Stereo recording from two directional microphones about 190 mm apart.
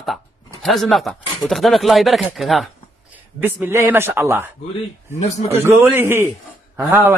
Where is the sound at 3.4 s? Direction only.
10° right (ahead or behind).